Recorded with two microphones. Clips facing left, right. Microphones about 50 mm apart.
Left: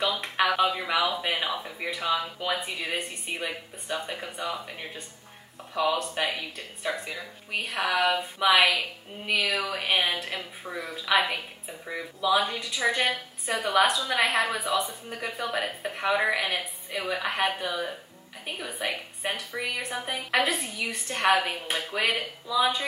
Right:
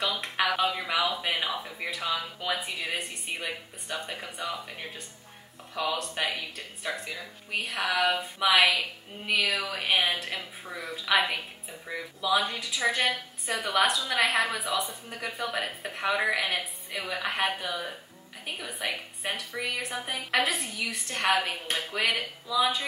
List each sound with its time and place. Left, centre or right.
0.0 s speech: centre